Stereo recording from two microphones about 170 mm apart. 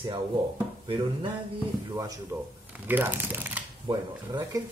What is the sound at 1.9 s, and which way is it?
Speech, 20° right (ahead or behind).